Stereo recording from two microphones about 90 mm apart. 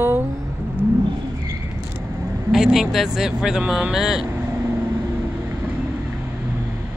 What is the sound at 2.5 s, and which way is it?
Speech, 5° right (ahead or behind).